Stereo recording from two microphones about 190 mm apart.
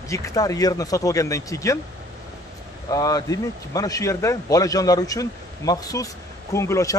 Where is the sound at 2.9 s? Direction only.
20° left (ahead or behind).